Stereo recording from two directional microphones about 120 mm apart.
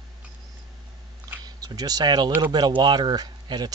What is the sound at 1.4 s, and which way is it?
Speech, 30° right (ahead or behind).